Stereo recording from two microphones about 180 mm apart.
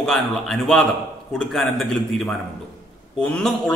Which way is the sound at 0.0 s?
Centre (ahead or behind).